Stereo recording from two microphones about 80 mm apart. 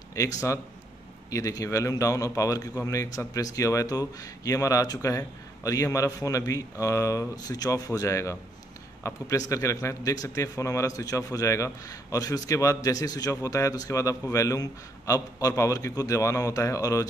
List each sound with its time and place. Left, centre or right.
0.1 s a man's voice: left